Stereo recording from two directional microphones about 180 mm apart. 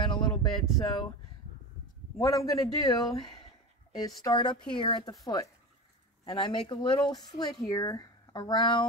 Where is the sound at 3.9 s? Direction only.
20° left (ahead or behind).